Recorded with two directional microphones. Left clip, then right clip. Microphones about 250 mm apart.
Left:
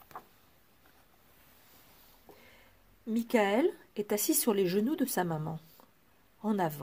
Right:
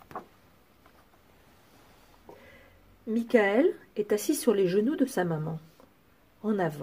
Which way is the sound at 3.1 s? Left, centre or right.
Left.